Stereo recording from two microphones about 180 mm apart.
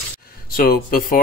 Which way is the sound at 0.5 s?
50° left (ahead or behind).